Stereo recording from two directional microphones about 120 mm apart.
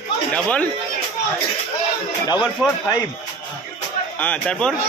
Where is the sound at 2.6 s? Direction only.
15° right (ahead or behind).